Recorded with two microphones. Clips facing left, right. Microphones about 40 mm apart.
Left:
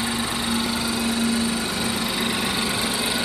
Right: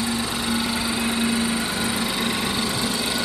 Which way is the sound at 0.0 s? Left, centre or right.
Left.